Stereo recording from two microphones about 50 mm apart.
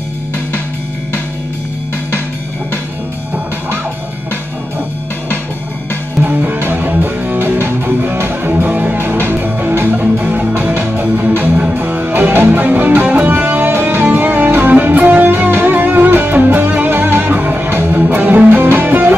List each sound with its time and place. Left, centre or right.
6.2 s music: right
7.8 s music: right
8.9 s music: right